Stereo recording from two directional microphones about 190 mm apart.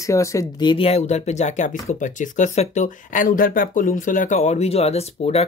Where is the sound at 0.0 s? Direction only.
15° left (ahead or behind).